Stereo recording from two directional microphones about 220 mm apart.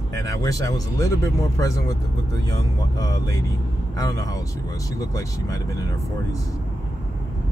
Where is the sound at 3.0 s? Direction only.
15° left (ahead or behind).